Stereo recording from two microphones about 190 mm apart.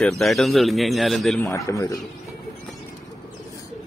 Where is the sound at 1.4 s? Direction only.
15° left (ahead or behind).